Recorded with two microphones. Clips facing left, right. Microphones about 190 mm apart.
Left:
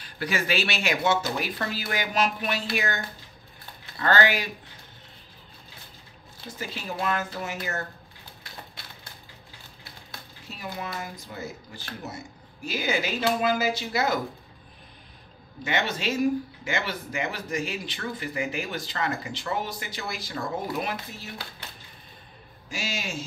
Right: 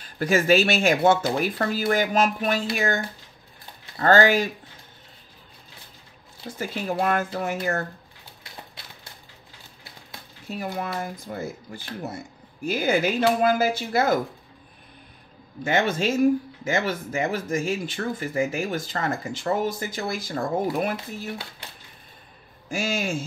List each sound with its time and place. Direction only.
0.0 s speech: 45° right (ahead or behind)
4.0 s speech: 45° right (ahead or behind)
6.7 s speech: 50° right (ahead or behind)
10.5 s speech: 50° right (ahead or behind)
15.6 s speech: 50° right (ahead or behind)
22.7 s speech: 50° right (ahead or behind)